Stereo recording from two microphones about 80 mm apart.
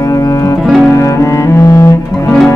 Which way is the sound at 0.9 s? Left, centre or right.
Left.